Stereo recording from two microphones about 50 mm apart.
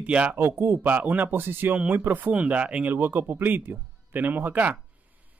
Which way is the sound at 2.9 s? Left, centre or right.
Right.